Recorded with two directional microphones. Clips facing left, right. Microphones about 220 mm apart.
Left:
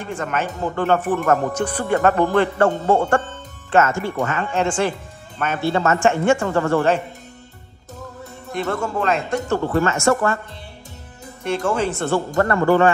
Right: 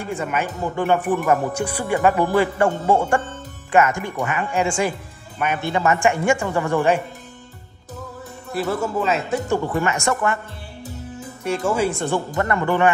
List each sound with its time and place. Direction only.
0.0 s a man's voice: 10° right (ahead or behind)
8.5 s speech: 5° right (ahead or behind)
9.8 s a man's voice: 15° right (ahead or behind)
11.4 s a man's voice: 10° right (ahead or behind)